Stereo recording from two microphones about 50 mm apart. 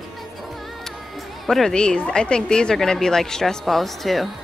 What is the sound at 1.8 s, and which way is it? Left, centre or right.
A woman's voice, centre.